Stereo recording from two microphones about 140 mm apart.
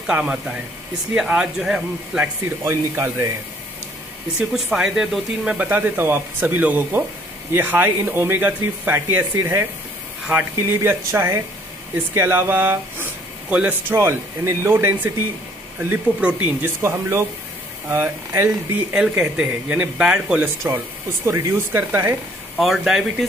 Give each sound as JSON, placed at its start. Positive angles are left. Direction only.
{"t": 0.0, "sound": "speech", "side_deg": -5}
{"t": 2.6, "sound": "speech", "side_deg": -20}
{"t": 4.4, "sound": "speech", "side_deg": -5}
{"t": 10.7, "sound": "speech", "side_deg": -15}
{"t": 18.3, "sound": "speech", "side_deg": -15}
{"t": 22.6, "sound": "speech", "side_deg": 0}